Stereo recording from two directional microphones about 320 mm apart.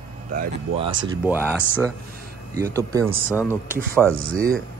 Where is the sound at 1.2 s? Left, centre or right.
Centre.